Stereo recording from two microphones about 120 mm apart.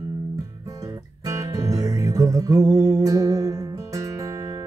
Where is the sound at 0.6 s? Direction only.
30° right (ahead or behind).